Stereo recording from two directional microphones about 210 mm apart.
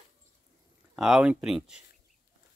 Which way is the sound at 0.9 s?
5° right (ahead or behind).